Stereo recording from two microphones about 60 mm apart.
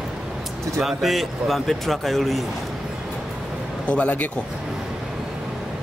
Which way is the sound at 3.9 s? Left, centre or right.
Left.